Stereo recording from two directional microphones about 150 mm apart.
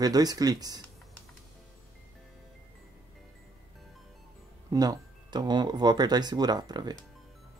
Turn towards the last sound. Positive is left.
turn(degrees=-25)  # may be behind; listen again after turning